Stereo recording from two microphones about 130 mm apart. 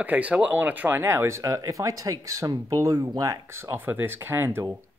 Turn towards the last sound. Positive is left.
turn(degrees=-15)  # may be behind; listen again after turning